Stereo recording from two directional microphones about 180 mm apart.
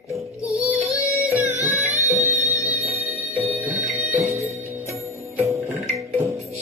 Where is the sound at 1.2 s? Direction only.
10° right (ahead or behind).